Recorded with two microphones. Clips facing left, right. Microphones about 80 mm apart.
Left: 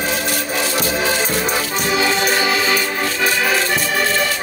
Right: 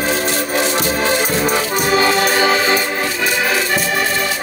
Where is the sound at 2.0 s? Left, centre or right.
Right.